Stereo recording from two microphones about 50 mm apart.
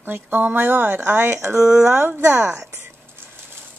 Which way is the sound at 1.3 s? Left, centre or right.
Right.